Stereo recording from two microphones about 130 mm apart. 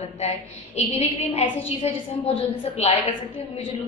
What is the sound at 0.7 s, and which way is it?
A woman's voice, 50° left (ahead or behind).